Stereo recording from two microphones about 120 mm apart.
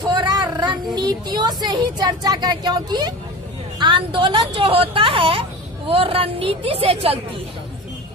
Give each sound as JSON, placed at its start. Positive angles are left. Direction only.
{"t": 0.0, "sound": "a woman's voice", "side_deg": -40}